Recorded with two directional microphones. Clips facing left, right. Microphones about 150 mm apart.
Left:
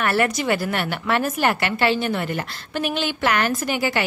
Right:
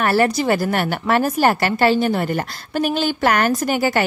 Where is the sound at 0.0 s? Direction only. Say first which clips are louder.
Right 4 dB; 35° right (ahead or behind).